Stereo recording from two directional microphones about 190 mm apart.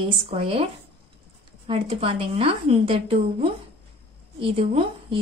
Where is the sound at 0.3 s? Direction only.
30° right (ahead or behind).